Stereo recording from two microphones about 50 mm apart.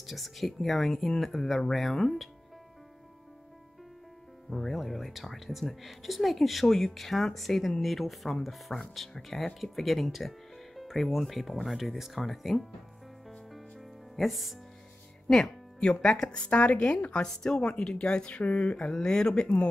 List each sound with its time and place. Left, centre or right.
0.0 s speech: centre
4.5 s speech: centre
13.5 s music: centre
15.2 s speech: centre; by 18.8 s left
18.8 s speech: centre